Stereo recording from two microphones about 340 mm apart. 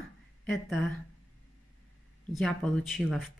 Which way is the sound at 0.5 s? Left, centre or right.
Centre.